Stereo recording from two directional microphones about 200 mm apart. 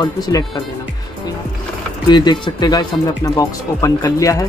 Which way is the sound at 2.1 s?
20° left (ahead or behind).